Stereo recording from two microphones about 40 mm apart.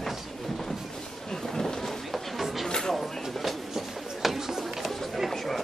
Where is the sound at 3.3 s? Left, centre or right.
Centre.